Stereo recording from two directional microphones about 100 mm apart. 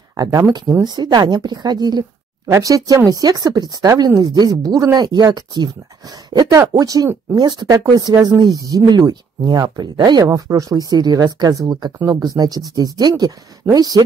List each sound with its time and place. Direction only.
0.1 s a woman's voice: 35° right (ahead or behind)